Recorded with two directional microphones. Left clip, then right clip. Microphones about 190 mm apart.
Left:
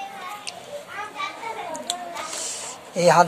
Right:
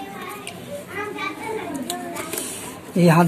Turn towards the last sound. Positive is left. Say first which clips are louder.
# left 2 dB
turn(degrees=15)  # may be behind; listen again after turning